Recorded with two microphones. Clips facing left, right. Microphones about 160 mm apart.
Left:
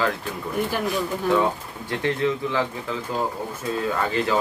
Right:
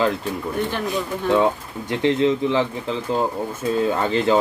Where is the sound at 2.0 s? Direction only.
20° right (ahead or behind).